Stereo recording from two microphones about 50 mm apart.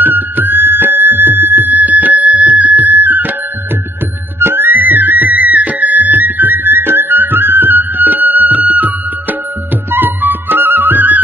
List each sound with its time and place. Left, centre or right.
0.0 s music: right
4.4 s music: right
9.9 s music: right